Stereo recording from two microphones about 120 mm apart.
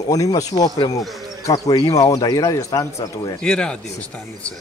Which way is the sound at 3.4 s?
5° left (ahead or behind).